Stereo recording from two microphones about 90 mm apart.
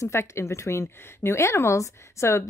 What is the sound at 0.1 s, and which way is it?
A woman's voice, 30° left (ahead or behind).